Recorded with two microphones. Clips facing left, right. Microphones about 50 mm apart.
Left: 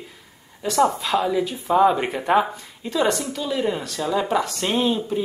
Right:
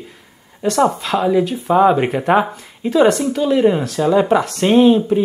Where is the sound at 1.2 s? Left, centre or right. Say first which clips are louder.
Right 6 dB; centre.